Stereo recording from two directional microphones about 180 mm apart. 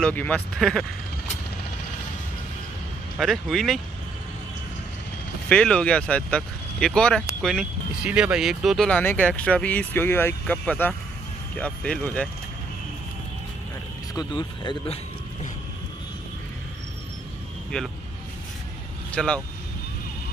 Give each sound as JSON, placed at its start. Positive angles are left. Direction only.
{"t": 0.0, "sound": "speech", "side_deg": 10}
{"t": 3.2, "sound": "speech", "side_deg": 0}
{"t": 5.5, "sound": "speech", "side_deg": 5}
{"t": 14.1, "sound": "speech", "side_deg": 25}
{"t": 17.7, "sound": "speech", "side_deg": 5}
{"t": 19.1, "sound": "speech", "side_deg": 5}